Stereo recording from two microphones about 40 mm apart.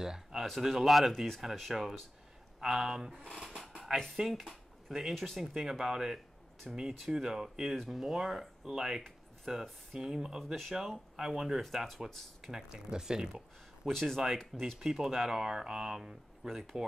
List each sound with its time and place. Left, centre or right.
0.0 s a sound: centre
0.6 s speech: centre
3.5 s a sound: centre
4.2 s speech: centre
10.4 s speech: centre
10.8 s speech: centre
13.8 s speech: centre
14.8 s speech: centre
16.4 s speech: centre